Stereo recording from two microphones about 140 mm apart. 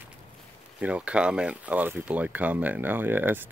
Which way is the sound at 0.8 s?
10° right (ahead or behind).